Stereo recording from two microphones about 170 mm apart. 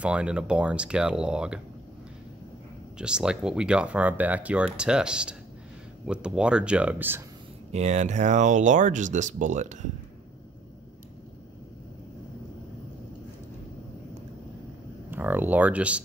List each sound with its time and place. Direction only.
0.0 s speech: 5° right (ahead or behind)
3.0 s speech: 5° right (ahead or behind)
7.7 s speech: 45° right (ahead or behind)
15.0 s speech: 10° right (ahead or behind)